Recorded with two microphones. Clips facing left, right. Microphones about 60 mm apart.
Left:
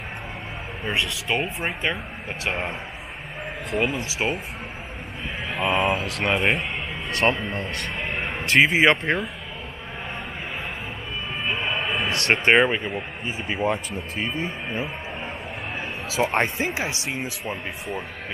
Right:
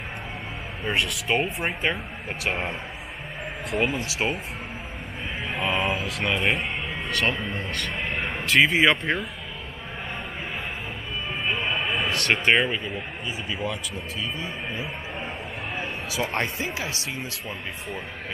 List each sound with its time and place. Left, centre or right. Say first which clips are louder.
0.8 s speech: even; centre
3.7 s speech: left 1 dB; centre
5.5 s speech: left 4 dB; centre
6.2 s speech: left 2 dB; left
8.2 s a sound: left 1 dB; centre
11.7 s speech: left 1 dB; centre; by 14.9 s left
16.3 s speech: left 4 dB; left